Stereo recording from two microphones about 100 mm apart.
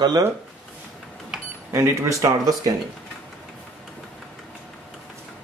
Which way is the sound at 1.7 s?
30° right (ahead or behind).